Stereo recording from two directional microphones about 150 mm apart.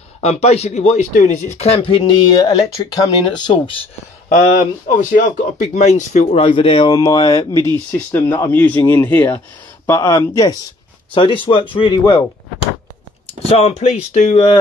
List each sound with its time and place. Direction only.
0.2 s speech: 45° left (ahead or behind)
1.6 s speech: 40° left (ahead or behind)
4.6 s speech: 60° left (ahead or behind); by 7.0 s 35° left (ahead or behind)
7.0 s speech: 25° left (ahead or behind)
11.1 s speech: 35° left (ahead or behind)
13.4 s speech: 45° left (ahead or behind)